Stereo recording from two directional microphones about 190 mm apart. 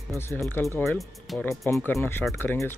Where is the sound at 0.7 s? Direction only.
Centre (ahead or behind).